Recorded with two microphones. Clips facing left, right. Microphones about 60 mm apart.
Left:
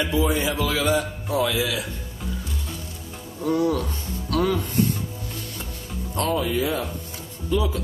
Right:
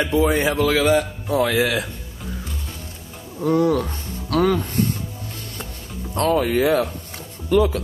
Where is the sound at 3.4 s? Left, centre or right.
Right.